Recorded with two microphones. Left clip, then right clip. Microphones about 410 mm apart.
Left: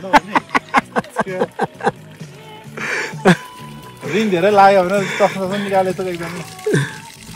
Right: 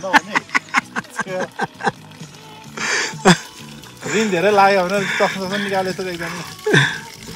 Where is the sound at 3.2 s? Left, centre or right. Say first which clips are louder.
Even; centre.